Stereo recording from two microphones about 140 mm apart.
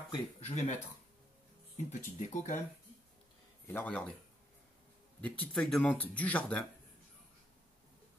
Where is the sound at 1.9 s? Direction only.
60° left (ahead or behind).